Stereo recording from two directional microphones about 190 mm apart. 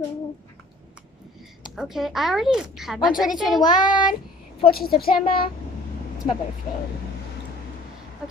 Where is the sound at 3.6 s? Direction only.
20° left (ahead or behind).